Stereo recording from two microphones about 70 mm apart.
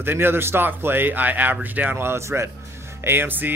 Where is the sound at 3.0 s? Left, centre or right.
Right.